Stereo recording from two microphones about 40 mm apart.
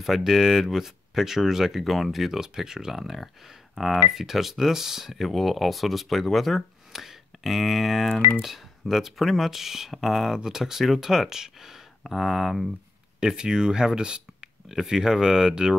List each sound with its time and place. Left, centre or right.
0.0 s speech: centre
1.9 s speech: centre
13.4 s speech: centre